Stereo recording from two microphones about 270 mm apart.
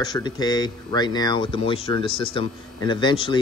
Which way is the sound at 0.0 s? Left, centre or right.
Centre.